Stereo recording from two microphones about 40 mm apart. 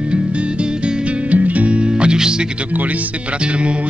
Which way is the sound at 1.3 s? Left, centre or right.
Right.